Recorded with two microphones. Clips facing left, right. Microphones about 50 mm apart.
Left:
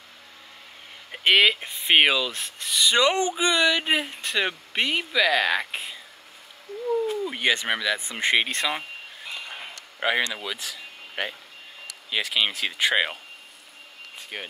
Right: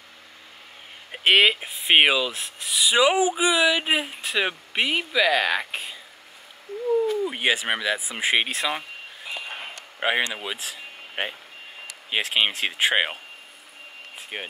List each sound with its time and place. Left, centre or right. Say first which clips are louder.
1.1 s speech: right 1 dB; centre
6.7 s a sound: right 2 dB; right
7.2 s speech: right 1 dB; centre
9.9 s speech: right 1 dB; centre
14.3 s speech: right 2 dB; centre